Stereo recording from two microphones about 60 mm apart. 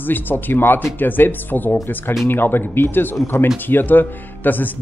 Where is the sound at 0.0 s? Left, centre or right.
Left.